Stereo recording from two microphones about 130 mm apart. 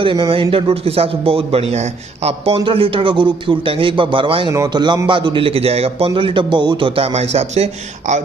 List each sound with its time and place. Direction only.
0.0 s a man's voice: 35° right (ahead or behind)
4.5 s a man's voice: 30° right (ahead or behind)
7.0 s a man's voice: 55° right (ahead or behind)